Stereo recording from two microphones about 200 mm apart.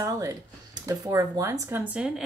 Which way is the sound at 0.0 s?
15° right (ahead or behind).